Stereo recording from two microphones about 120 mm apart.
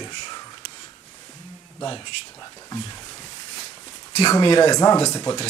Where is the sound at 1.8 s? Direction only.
40° left (ahead or behind).